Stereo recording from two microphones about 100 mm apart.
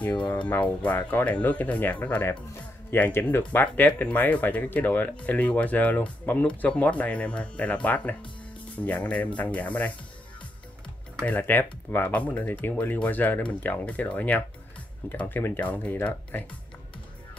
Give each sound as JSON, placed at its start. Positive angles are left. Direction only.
{"t": 0.2, "sound": "speech", "side_deg": 15}
{"t": 11.2, "sound": "speech", "side_deg": 15}